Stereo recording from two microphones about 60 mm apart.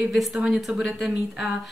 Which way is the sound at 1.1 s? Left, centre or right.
Centre.